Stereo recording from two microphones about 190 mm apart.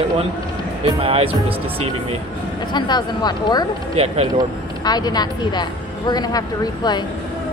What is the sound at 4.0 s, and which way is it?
Speech, 35° right (ahead or behind).